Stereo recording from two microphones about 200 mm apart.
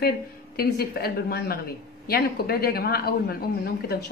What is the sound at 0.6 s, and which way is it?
Speech, 50° left (ahead or behind).